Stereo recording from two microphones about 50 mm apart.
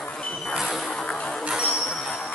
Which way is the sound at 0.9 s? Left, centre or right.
Centre.